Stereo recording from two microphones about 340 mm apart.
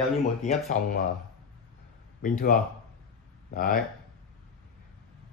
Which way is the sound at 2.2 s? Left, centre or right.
Left.